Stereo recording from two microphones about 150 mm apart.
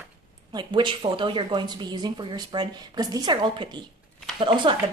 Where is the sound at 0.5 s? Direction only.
35° right (ahead or behind).